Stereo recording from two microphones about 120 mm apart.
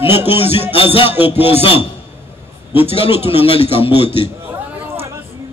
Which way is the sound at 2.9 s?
50° left (ahead or behind).